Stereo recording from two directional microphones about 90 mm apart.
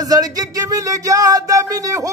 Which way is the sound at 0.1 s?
45° right (ahead or behind).